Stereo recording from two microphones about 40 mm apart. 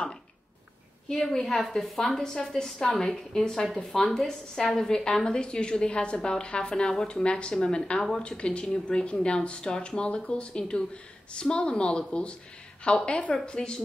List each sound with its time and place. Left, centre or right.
1.0 s a woman's voice: centre
7.2 s a woman's voice: left